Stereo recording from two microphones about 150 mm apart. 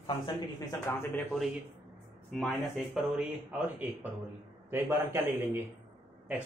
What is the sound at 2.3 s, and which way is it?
Speech, centre (ahead or behind).